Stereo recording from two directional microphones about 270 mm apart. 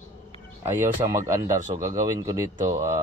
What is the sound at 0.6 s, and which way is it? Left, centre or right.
Speech, centre.